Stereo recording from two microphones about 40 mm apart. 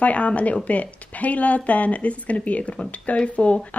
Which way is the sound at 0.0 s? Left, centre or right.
Left.